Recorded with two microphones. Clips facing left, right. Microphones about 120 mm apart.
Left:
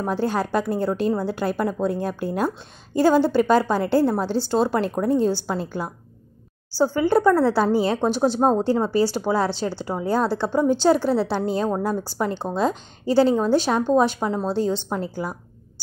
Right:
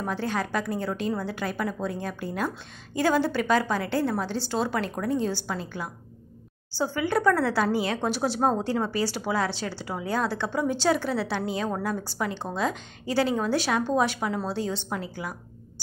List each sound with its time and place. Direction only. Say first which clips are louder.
0.0 s a woman's voice: left 6 dB; 35° left (ahead or behind)
3.0 s a woman's voice: left 7 dB; 30° left (ahead or behind)